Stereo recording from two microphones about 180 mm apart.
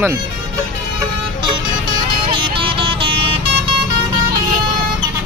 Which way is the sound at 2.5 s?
30° right (ahead or behind).